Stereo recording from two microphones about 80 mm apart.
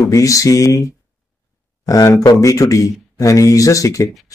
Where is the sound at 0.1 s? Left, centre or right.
Left.